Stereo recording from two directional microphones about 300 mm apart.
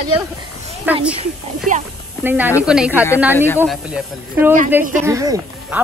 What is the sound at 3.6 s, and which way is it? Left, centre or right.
Speech, centre.